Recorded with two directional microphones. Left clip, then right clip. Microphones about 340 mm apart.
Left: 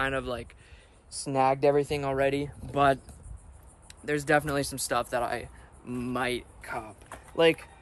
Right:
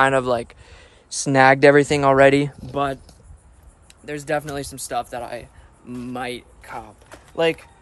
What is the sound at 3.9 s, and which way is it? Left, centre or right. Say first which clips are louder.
A man's voice: right 1 dB; centre.